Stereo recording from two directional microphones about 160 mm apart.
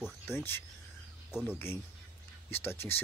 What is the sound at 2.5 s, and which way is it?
Speech, 15° left (ahead or behind).